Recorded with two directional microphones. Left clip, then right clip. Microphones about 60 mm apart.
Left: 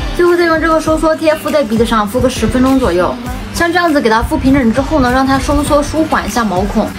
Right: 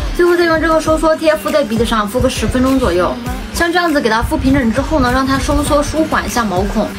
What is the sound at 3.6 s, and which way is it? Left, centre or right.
A woman's voice, left.